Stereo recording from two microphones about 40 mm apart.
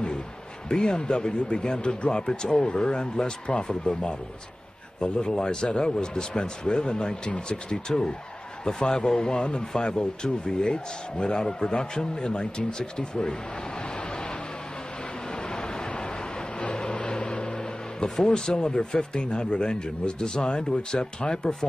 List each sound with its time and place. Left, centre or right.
0.7 s speech: centre
16.6 s vehicle: left
18.0 s speech: centre